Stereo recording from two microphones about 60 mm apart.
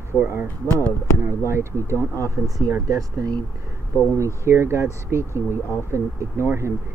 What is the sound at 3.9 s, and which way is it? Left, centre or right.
Speech, left.